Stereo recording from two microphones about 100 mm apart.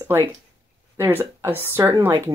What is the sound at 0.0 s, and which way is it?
Speech, 25° right (ahead or behind).